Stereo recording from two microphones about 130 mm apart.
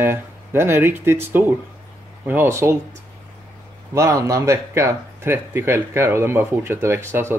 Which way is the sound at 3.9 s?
25° right (ahead or behind).